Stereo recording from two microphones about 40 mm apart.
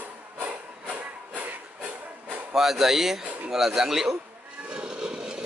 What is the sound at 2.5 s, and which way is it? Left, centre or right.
A man's voice, centre.